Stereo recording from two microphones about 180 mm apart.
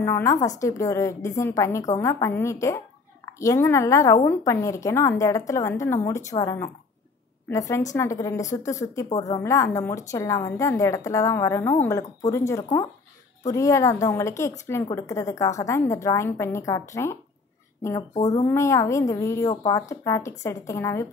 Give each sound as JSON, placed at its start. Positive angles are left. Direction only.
{"t": 0.0, "sound": "a woman's voice", "side_deg": 15}
{"t": 18.4, "sound": "a woman's voice", "side_deg": 15}